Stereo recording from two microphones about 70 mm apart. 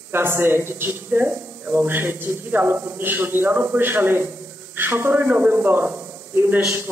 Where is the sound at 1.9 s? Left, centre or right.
Right.